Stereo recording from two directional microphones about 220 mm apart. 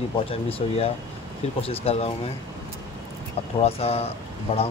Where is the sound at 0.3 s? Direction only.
25° left (ahead or behind).